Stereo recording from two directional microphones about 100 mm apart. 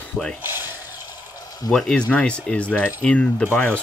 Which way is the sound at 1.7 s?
5° left (ahead or behind).